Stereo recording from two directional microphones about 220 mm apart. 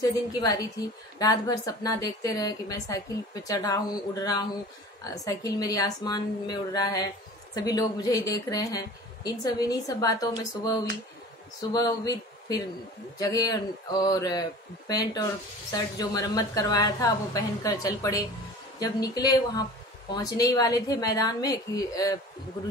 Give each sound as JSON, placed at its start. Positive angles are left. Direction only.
{"t": 0.0, "sound": "a woman's voice", "side_deg": 20}
{"t": 11.7, "sound": "a man's voice", "side_deg": 15}